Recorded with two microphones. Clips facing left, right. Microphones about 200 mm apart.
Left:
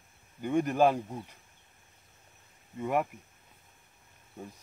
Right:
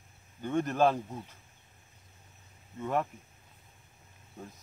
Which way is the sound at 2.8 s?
15° left (ahead or behind).